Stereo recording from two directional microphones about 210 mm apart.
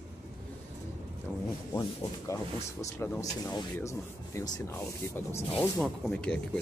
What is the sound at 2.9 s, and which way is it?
Speech, 10° left (ahead or behind).